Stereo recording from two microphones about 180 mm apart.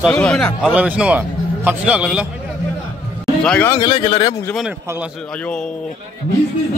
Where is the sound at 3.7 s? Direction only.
25° left (ahead or behind).